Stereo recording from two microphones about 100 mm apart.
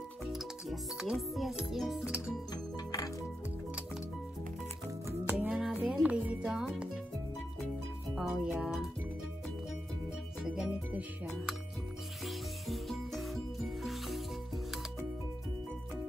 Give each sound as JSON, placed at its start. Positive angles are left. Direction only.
{"t": 0.3, "sound": "speech", "side_deg": -5}
{"t": 2.5, "sound": "music", "side_deg": 40}
{"t": 5.0, "sound": "music", "side_deg": -20}
{"t": 8.2, "sound": "speech", "side_deg": -10}
{"t": 10.4, "sound": "music", "side_deg": -10}
{"t": 12.3, "sound": "music", "side_deg": 0}